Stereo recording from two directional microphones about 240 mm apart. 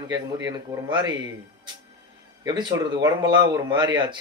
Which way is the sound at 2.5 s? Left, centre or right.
Centre.